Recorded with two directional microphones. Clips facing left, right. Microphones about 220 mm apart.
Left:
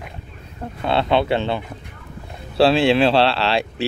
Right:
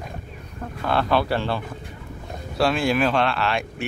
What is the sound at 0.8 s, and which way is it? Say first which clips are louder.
Speech: left 3 dB; 25° left (ahead or behind).